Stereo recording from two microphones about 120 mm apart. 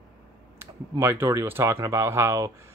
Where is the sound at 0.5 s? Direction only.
20° right (ahead or behind).